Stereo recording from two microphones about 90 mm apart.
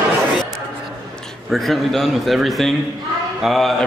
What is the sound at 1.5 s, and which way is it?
A man's voice, centre (ahead or behind).